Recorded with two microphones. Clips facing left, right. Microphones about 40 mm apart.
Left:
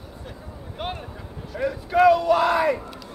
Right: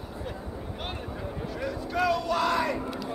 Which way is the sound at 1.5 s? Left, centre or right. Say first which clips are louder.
Left 10 dB; centre.